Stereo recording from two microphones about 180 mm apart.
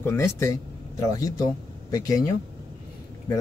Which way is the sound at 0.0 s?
15° left (ahead or behind).